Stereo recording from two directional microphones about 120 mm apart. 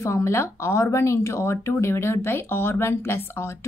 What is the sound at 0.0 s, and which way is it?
A woman's voice, 25° left (ahead or behind).